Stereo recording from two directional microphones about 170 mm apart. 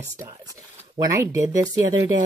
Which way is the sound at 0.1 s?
20° right (ahead or behind).